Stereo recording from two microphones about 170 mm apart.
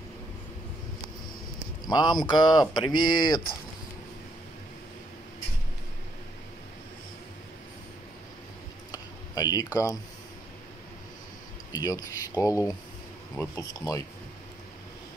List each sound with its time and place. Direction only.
1.9 s speech: 25° left (ahead or behind)
8.9 s a sound: 20° left (ahead or behind)
11.7 s speech: 20° left (ahead or behind)